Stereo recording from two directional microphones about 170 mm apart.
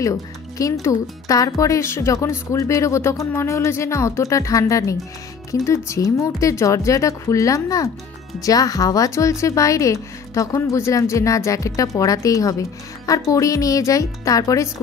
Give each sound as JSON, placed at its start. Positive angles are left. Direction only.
{"t": 0.0, "sound": "speech", "side_deg": 20}